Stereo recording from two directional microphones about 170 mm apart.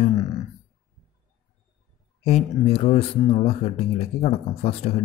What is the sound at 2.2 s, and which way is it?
A man's voice, 35° left (ahead or behind).